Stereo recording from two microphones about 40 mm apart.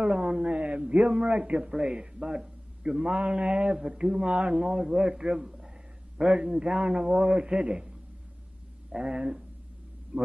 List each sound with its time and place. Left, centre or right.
0.0 s a man's voice: centre
4.6 s a man's voice: centre
9.1 s a man's voice: right